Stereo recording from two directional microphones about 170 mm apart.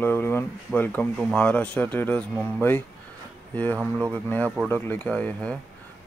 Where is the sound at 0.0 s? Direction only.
15° left (ahead or behind).